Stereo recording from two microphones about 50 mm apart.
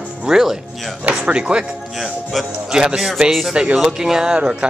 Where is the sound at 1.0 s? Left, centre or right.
Right; by 3.5 s centre.